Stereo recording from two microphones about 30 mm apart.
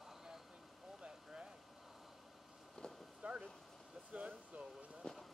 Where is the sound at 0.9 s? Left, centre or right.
Right.